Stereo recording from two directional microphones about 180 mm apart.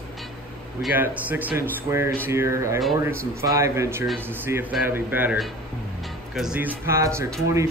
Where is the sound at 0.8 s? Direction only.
10° right (ahead or behind).